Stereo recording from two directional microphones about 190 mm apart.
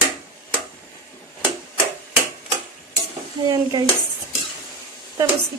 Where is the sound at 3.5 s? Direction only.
20° right (ahead or behind).